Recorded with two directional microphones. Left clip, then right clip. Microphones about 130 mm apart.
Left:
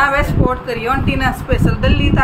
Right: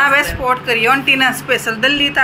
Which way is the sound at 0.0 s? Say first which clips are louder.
Right 2 dB; 15° right (ahead or behind).